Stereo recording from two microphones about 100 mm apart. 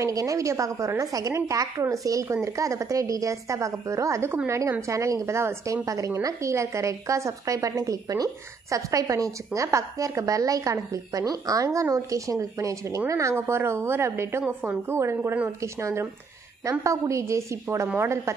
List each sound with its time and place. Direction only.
0.0 s a woman's voice: 35° right (ahead or behind)
14.4 s a woman's voice: 10° right (ahead or behind)
14.9 s a woman's voice: 25° right (ahead or behind)